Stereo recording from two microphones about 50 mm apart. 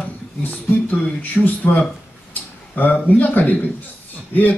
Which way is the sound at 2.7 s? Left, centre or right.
Left.